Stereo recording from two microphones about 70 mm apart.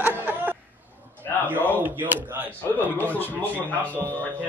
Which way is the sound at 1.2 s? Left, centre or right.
Left.